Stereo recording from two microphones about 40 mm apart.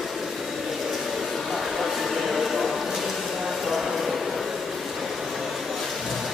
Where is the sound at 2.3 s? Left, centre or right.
Centre.